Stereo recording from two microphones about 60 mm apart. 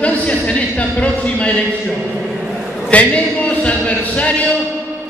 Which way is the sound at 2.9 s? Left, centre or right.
Left.